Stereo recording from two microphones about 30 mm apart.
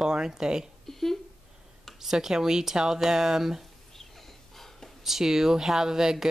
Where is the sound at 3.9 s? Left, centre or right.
Centre.